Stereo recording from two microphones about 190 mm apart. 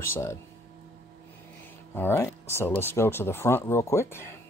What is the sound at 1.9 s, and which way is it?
Speech, 10° left (ahead or behind).